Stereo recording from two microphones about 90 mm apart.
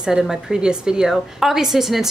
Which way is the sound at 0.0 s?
5° right (ahead or behind).